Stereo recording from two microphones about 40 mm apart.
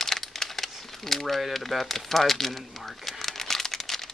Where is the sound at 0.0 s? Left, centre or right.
Centre.